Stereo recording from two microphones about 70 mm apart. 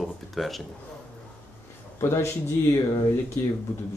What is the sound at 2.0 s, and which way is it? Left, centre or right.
Speech, left.